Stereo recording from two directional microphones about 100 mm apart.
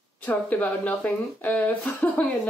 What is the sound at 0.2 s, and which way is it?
A woman's voice, 15° left (ahead or behind).